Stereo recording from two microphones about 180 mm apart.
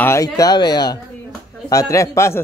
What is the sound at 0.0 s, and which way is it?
A man's voice, 15° left (ahead or behind).